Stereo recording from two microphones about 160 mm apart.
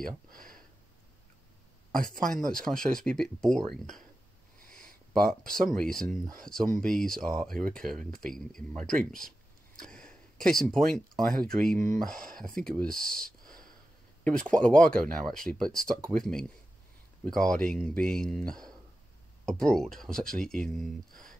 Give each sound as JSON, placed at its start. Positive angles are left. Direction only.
{"t": 0.3, "sound": "a sound", "side_deg": -60}
{"t": 1.9, "sound": "speech", "side_deg": -60}
{"t": 2.2, "sound": "speech", "side_deg": 5}
{"t": 4.8, "sound": "a sound", "side_deg": 5}
{"t": 5.5, "sound": "speech", "side_deg": 0}
{"t": 9.8, "sound": "speech", "side_deg": 5}
{"t": 19.4, "sound": "speech", "side_deg": 5}